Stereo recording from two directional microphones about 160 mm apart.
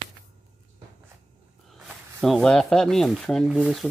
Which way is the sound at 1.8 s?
Centre (ahead or behind).